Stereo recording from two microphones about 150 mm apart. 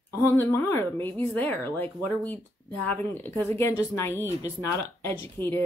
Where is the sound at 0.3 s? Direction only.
15° left (ahead or behind).